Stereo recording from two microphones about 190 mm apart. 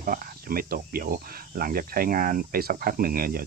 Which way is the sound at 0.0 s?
50° right (ahead or behind).